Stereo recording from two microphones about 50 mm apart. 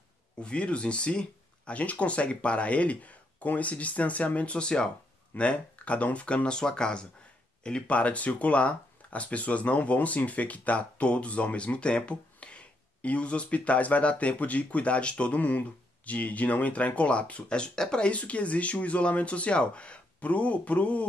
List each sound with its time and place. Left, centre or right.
0.4 s speech: left
4.6 s speech: centre